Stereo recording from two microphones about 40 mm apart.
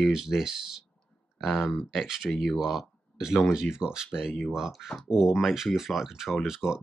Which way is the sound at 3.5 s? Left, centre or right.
Centre.